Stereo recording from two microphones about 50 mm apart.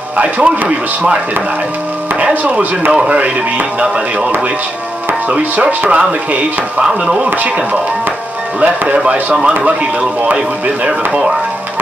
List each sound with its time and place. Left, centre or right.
0.2 s speech: right
2.9 s speech: right
5.3 s speech: right
6.8 s speech: centre
8.5 s speech: right
10.9 s speech: centre